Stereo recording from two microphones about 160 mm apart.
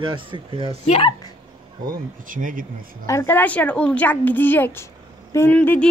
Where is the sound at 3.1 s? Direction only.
15° left (ahead or behind).